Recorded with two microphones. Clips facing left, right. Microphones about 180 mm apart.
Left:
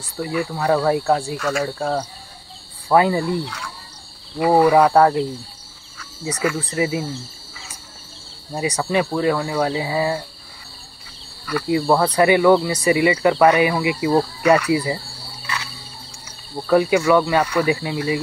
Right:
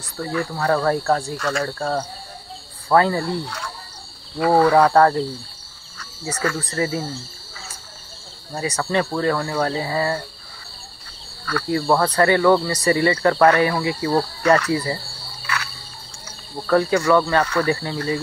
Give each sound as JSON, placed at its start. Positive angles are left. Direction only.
{"t": 0.2, "sound": "speech", "side_deg": 10}
{"t": 6.2, "sound": "speech", "side_deg": 10}
{"t": 8.5, "sound": "speech", "side_deg": 15}
{"t": 11.4, "sound": "speech", "side_deg": 15}
{"t": 15.4, "sound": "cricket", "side_deg": 20}
{"t": 16.6, "sound": "speech", "side_deg": 10}